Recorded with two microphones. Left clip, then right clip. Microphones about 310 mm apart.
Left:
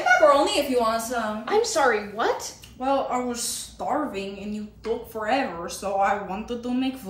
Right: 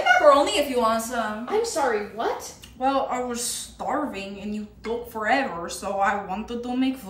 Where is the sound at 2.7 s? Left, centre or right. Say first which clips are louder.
Right 1 dB; centre.